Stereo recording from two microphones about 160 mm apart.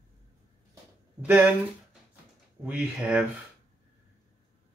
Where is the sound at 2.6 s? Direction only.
10° right (ahead or behind).